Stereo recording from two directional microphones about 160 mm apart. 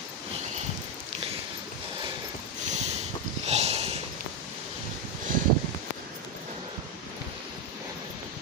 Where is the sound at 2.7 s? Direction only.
45° right (ahead or behind).